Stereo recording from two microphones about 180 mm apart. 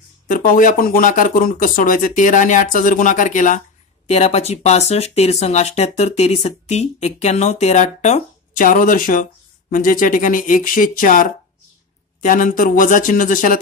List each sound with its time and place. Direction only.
0.3 s speech: 50° left (ahead or behind)